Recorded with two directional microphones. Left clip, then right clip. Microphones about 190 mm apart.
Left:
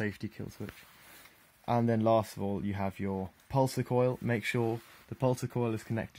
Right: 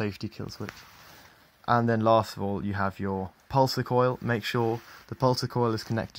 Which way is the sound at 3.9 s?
15° left (ahead or behind).